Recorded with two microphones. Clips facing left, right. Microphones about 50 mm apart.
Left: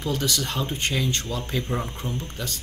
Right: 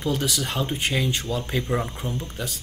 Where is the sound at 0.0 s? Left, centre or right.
Centre.